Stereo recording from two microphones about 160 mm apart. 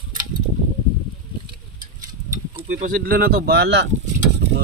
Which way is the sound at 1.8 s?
55° right (ahead or behind).